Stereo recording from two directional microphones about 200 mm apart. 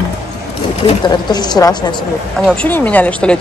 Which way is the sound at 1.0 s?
20° left (ahead or behind).